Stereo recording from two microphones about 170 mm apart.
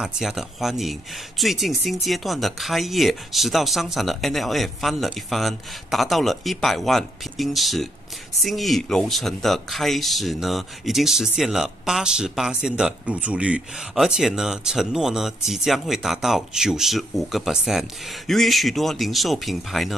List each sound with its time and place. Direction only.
0.0 s speech: centre (ahead or behind)